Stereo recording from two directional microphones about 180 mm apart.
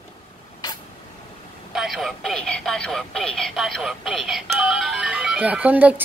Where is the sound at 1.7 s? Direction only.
Centre (ahead or behind).